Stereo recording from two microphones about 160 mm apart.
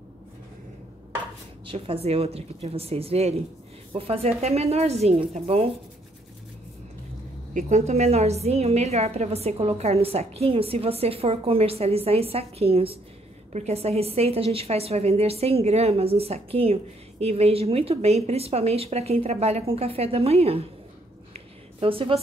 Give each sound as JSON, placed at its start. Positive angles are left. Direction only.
{"t": 1.7, "sound": "a woman's voice", "side_deg": -40}
{"t": 7.5, "sound": "a woman's voice", "side_deg": -45}
{"t": 21.3, "sound": "a sound", "side_deg": -35}